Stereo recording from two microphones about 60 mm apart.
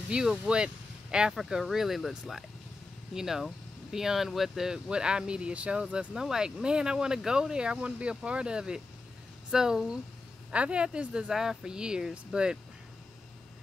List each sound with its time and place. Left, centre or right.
0.1 s speech: centre
1.6 s speech: centre